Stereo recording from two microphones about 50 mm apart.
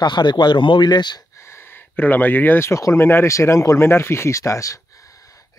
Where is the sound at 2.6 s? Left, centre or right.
Left.